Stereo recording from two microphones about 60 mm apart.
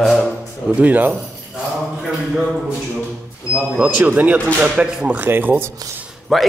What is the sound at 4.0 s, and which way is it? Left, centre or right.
Speech, right.